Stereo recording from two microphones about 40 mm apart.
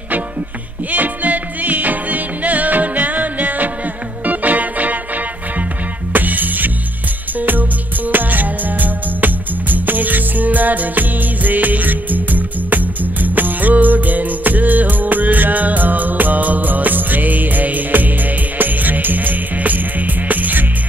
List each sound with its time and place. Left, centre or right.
0.9 s music: right